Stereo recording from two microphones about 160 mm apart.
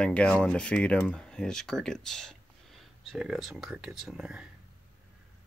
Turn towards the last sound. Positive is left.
turn(degrees=-5)  # may be behind; listen again after turning